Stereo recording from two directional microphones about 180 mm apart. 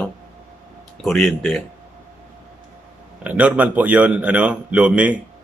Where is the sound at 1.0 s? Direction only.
Centre (ahead or behind).